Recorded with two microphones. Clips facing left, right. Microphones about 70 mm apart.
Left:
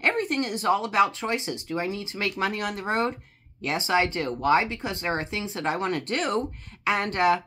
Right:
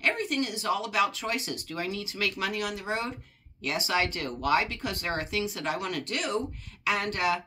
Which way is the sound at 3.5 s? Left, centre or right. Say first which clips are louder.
Left 4 dB; left.